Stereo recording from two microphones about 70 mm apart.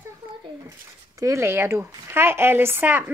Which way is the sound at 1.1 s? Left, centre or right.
Right.